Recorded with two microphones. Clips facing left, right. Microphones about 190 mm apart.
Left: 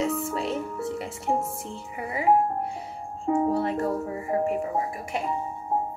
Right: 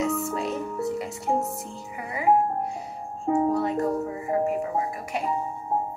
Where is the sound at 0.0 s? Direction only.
30° left (ahead or behind).